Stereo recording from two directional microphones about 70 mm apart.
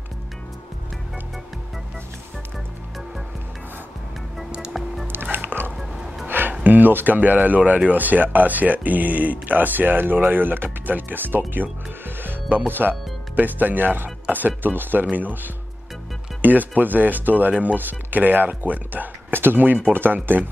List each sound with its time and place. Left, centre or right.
4.5 s music: centre
5.0 s music: right
6.5 s speech: right
12.2 s music: right
13.4 s speech: right